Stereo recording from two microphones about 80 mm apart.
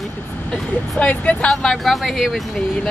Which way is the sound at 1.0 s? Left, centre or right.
Centre.